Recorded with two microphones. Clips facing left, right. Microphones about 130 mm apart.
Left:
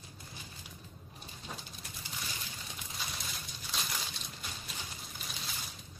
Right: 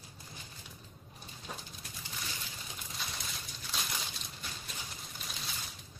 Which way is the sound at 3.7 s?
Centre (ahead or behind).